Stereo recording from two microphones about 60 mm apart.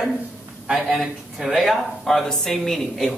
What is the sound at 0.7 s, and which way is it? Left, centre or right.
Speech, centre.